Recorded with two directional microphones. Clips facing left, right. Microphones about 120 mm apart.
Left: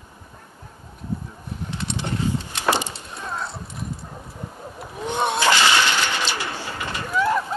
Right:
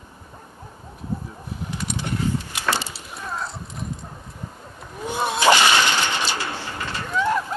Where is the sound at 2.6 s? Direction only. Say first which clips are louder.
Left 5 dB; 15° left (ahead or behind).